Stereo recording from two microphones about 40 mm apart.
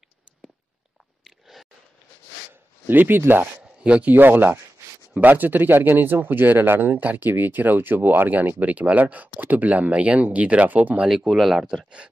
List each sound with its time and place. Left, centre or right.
1.2 s chewing: centre
2.9 s speech: right
3.8 s speech: right
4.1 s speech: right
11.2 s speech: centre
11.6 s speech: right